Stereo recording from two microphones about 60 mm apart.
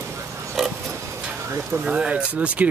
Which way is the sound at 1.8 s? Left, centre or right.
Centre.